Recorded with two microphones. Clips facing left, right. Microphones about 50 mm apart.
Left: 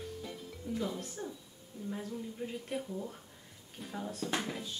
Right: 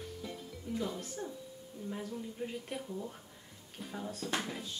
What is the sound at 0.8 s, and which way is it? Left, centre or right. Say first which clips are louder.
Speech: even; centre.